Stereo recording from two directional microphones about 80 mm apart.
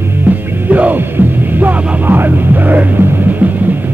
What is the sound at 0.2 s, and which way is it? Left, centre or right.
Music, centre.